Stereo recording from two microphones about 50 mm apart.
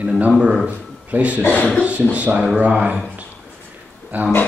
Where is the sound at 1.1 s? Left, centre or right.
Right.